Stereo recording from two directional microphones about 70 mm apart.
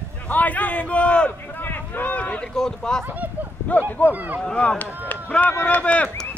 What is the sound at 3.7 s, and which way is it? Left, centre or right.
Speech, left.